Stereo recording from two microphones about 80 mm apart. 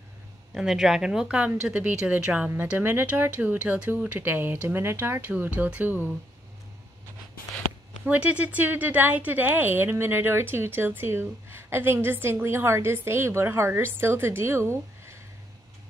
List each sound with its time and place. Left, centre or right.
0.6 s speech: centre
1.5 s a woman's voice: right
8.0 s a woman's voice: centre; by 15.1 s right